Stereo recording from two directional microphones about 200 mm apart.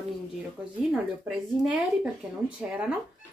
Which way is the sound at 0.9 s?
5° right (ahead or behind).